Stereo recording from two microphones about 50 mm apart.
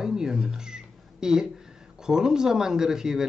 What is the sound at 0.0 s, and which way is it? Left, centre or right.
Speech, centre.